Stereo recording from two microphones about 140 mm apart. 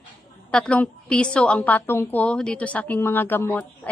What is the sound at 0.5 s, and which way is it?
A woman's voice, 5° left (ahead or behind).